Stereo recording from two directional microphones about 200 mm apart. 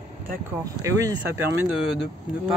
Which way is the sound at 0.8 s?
15° right (ahead or behind).